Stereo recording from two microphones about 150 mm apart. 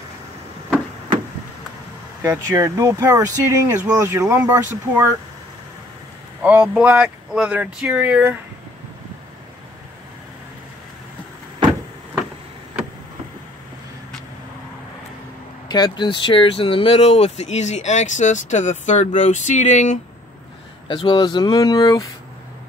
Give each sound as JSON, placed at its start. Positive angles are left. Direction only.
{"t": 2.2, "sound": "speech", "side_deg": -20}
{"t": 6.4, "sound": "speech", "side_deg": -5}
{"t": 15.7, "sound": "speech", "side_deg": 30}
{"t": 20.9, "sound": "speech", "side_deg": 30}